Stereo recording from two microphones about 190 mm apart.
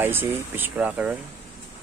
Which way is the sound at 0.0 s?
10° right (ahead or behind).